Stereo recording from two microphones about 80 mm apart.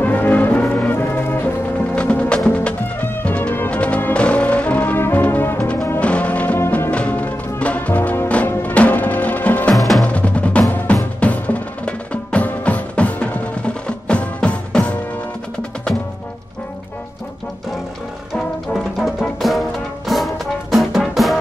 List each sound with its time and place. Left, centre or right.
0.0 s brass instrument: left
2.0 s music: centre
9.8 s music: centre
10.0 s music: centre
18.3 s music: centre
20.7 s music: centre